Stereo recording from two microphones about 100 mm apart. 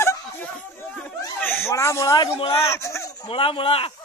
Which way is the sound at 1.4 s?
20° left (ahead or behind).